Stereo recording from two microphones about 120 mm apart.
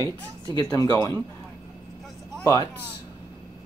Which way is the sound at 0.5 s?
30° left (ahead or behind).